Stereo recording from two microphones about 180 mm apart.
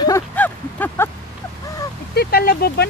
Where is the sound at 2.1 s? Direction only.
60° left (ahead or behind).